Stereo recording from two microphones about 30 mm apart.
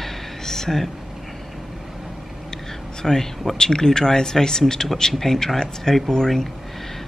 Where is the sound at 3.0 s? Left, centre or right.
Centre.